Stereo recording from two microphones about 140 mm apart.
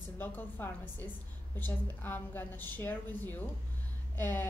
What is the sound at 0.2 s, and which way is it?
A woman's voice, 15° left (ahead or behind).